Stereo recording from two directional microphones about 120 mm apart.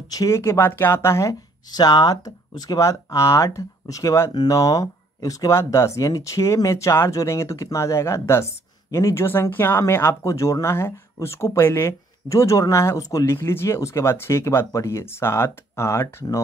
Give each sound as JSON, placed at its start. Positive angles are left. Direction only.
{"t": 0.1, "sound": "speech", "side_deg": 25}
{"t": 1.7, "sound": "speech", "side_deg": 35}